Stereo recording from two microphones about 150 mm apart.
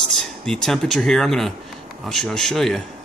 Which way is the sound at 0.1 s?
5° left (ahead or behind).